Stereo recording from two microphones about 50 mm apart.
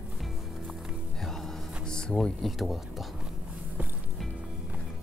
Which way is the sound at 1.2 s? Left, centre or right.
Centre.